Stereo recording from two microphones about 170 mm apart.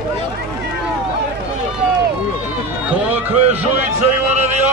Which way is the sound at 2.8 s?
10° right (ahead or behind).